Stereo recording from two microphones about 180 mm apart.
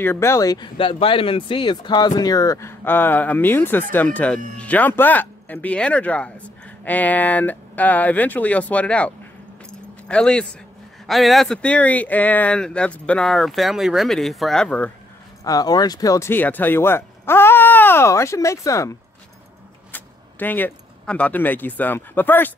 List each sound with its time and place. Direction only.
0.0 s speech: 15° left (ahead or behind)
9.7 s keys jangling: 5° left (ahead or behind)
11.1 s speech: centre (ahead or behind)
15.4 s speech: 20° left (ahead or behind)